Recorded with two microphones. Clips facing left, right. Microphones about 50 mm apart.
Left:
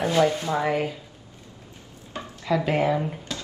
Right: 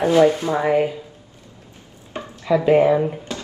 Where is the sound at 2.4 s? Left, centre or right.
Right.